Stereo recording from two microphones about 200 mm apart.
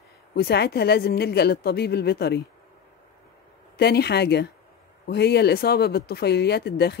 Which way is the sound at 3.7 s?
55° left (ahead or behind).